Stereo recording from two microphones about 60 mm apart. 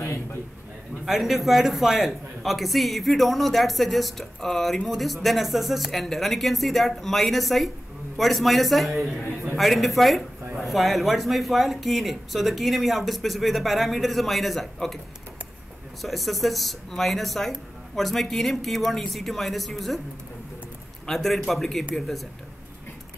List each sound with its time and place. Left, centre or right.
0.0 s a sound: left
1.0 s a man's voice: centre
16.0 s a man's voice: centre
21.1 s a man's voice: centre